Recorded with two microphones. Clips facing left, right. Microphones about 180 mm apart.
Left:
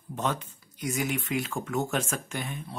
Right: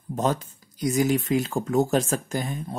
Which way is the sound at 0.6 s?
35° right (ahead or behind).